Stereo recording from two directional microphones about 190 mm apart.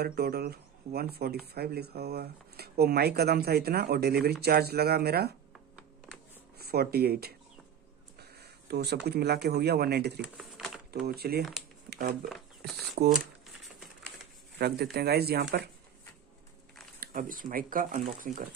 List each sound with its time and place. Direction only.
0.0 s speech: 55° right (ahead or behind)
6.6 s speech: 55° right (ahead or behind)
10.2 s a sound: 5° right (ahead or behind)
11.1 s speech: 55° right (ahead or behind)
12.9 s speech: 55° right (ahead or behind)
14.6 s speech: 55° right (ahead or behind)
17.0 s speech: 45° right (ahead or behind)